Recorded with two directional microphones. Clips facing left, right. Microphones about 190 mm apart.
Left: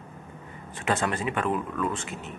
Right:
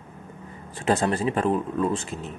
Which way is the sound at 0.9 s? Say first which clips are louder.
Right 4 dB; 35° right (ahead or behind).